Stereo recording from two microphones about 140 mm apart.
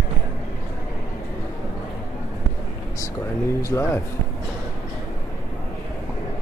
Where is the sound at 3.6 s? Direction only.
20° left (ahead or behind).